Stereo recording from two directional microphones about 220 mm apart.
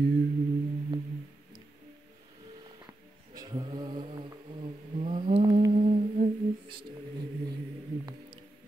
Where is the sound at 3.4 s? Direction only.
20° right (ahead or behind).